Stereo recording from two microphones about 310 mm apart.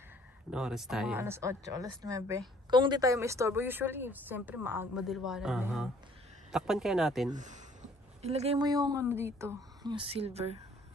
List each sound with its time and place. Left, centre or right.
0.5 s a man's voice: centre
7.3 s speech: right